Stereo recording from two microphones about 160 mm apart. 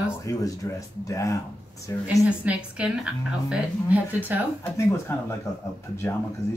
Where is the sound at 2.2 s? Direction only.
10° right (ahead or behind).